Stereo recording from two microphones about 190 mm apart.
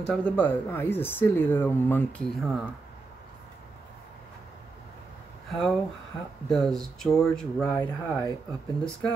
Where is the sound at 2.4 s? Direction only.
Centre (ahead or behind).